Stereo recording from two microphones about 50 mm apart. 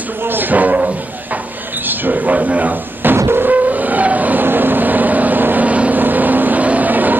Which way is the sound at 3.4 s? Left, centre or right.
Right.